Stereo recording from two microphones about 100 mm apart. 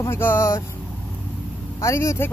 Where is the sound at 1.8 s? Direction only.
30° left (ahead or behind).